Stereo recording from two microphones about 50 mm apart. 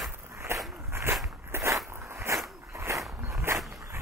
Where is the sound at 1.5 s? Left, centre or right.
Right.